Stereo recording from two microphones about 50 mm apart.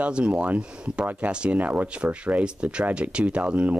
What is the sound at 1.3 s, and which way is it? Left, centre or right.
Speech, centre.